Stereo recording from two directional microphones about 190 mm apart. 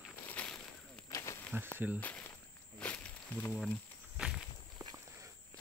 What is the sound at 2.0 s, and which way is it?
Walk, 10° left (ahead or behind).